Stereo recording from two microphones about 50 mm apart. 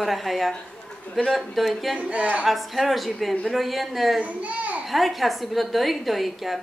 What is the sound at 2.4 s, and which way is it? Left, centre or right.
A woman's voice, centre.